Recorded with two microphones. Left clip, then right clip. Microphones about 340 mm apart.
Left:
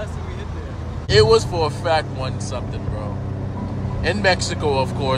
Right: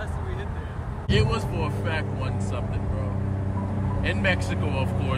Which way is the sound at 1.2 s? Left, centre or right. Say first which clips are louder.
Left 18 dB; centre.